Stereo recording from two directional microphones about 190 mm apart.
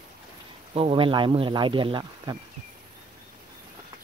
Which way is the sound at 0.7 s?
30° right (ahead or behind).